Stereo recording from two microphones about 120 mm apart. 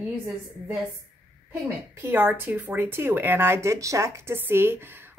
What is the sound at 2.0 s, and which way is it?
Speech, 20° right (ahead or behind).